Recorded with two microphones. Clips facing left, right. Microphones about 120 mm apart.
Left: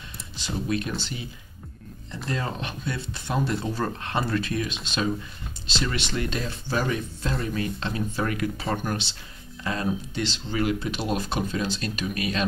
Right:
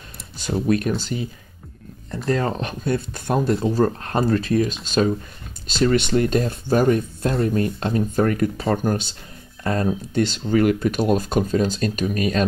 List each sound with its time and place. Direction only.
0.4 s speech: 50° right (ahead or behind)
2.2 s speech: 40° right (ahead or behind)